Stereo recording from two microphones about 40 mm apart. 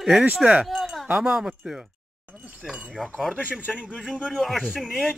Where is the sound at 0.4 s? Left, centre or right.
Right.